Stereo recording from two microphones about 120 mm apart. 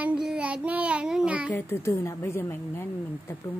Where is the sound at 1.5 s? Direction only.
20° left (ahead or behind).